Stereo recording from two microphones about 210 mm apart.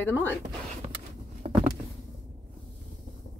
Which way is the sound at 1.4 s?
40° right (ahead or behind).